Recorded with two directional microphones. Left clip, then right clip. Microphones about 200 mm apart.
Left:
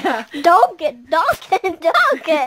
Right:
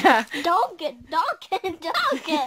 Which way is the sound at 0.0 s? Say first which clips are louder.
Right 3 dB; 40° right (ahead or behind).